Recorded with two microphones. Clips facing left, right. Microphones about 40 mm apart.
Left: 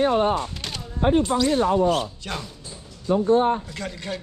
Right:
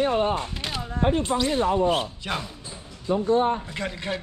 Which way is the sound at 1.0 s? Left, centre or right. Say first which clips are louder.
Left 4 dB; left.